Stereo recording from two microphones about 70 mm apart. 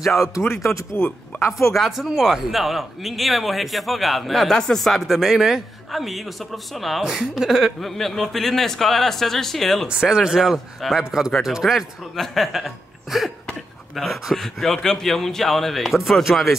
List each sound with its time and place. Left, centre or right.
0.0 s speech: centre
1.3 s a sound: left
1.7 s speech: centre
9.8 s speech: centre